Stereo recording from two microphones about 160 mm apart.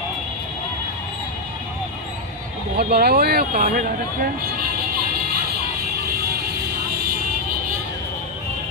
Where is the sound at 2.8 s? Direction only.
80° right; by 3.8 s 60° right (ahead or behind).